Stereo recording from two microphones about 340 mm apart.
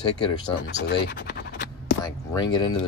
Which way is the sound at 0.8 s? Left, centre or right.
Left.